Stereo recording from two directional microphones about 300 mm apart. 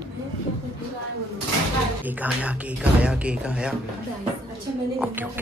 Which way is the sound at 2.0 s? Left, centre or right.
Centre.